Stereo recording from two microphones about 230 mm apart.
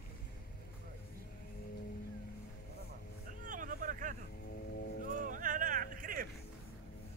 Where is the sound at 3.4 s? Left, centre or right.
Right.